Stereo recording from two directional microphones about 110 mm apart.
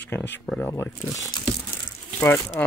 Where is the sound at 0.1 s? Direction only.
20° left (ahead or behind).